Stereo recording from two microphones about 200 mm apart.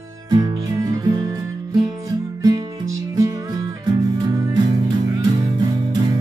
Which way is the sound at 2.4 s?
20° right (ahead or behind).